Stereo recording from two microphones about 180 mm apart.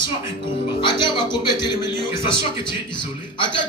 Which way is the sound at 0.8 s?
25° left (ahead or behind).